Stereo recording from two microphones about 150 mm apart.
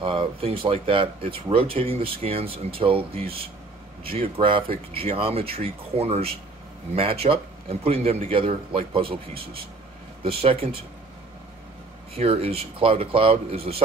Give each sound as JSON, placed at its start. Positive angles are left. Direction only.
{"t": 0.0, "sound": "a man's voice", "side_deg": -35}
{"t": 12.2, "sound": "speech", "side_deg": -40}